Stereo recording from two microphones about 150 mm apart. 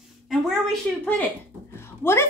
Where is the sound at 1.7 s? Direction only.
15° left (ahead or behind).